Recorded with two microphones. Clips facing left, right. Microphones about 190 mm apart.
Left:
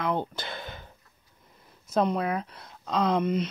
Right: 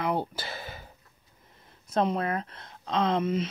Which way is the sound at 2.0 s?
Centre (ahead or behind).